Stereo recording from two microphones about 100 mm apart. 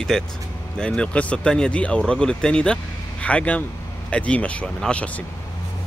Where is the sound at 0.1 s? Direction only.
5° left (ahead or behind).